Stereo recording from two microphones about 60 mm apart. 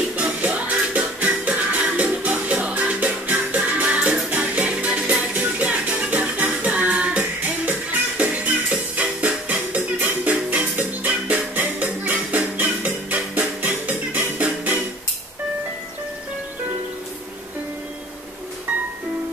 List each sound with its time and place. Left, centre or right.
0.1 s music: right